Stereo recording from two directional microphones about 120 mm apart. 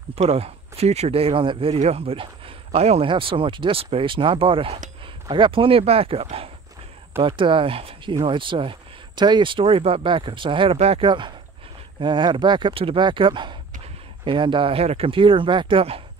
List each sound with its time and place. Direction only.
0.1 s speech: 60° right (ahead or behind)
3.1 s speech: 45° right (ahead or behind)
10.8 s speech: 60° right (ahead or behind)
11.1 s speech: 40° right (ahead or behind)